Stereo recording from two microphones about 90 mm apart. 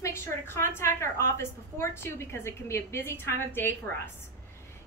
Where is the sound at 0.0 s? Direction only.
30° left (ahead or behind).